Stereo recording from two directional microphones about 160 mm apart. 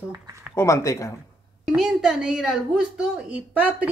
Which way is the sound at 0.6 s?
20° left (ahead or behind).